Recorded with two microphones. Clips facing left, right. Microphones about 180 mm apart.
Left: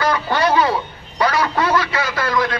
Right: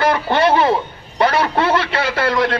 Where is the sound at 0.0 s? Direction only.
25° right (ahead or behind).